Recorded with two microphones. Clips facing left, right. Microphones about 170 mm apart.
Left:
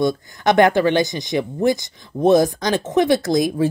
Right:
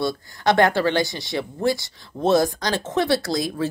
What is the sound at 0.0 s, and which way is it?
Speech, 20° left (ahead or behind).